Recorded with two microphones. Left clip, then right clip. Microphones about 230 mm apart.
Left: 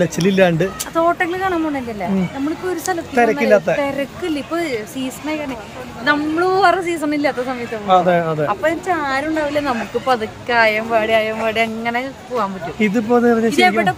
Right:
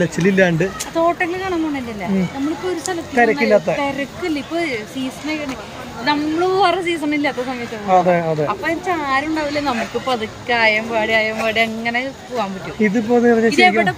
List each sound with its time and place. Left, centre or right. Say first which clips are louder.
0.0 s speech: left 1 dB; centre
3.2 s speech: right 1 dB; centre
3.8 s speech: left 1 dB; centre
6.0 s speech: left 1 dB; centre
7.9 s speech: left 1 dB; centre
8.5 s speech: left 2 dB; centre
12.8 s speech: even; centre
13.6 s speech: even; centre